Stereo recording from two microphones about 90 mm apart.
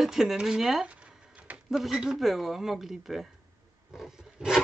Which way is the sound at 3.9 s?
5° right (ahead or behind).